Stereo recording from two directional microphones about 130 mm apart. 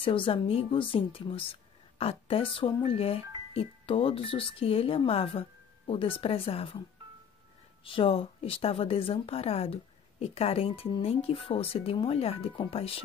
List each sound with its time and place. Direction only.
0.0 s speech: 45° left (ahead or behind)
7.8 s speech: 45° left (ahead or behind)